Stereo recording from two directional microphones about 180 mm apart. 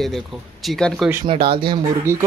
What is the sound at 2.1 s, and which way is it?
Speech, 15° right (ahead or behind).